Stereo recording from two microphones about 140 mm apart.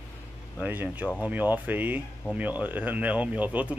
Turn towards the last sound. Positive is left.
turn(degrees=-10)  # may be behind; listen again after turning